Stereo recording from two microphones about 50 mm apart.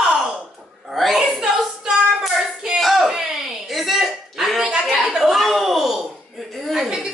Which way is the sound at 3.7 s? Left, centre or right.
Centre.